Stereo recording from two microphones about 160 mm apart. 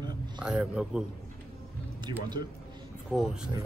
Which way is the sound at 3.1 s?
Centre (ahead or behind).